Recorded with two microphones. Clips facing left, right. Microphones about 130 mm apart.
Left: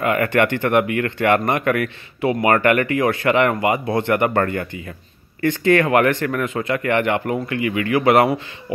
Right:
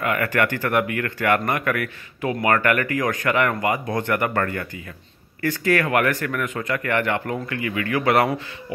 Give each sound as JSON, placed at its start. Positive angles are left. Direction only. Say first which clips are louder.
{"t": 0.0, "sound": "speech", "louder": "left 4 dB", "side_deg": 25}
{"t": 5.4, "sound": "speech", "louder": "left 5 dB", "side_deg": 25}